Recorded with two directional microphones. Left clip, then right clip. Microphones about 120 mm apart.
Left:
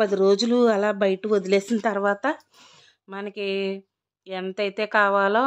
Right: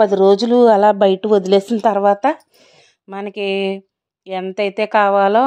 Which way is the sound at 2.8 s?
35° right (ahead or behind).